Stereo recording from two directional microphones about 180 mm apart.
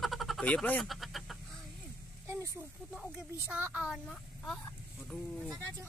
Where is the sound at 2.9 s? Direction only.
5° right (ahead or behind).